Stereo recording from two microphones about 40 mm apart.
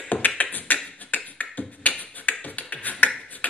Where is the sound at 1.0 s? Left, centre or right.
Left.